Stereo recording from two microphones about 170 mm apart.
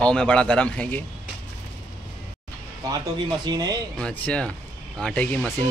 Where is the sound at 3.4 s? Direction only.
25° right (ahead or behind).